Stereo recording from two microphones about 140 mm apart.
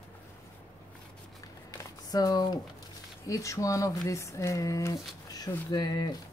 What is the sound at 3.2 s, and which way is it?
Speech, 20° left (ahead or behind).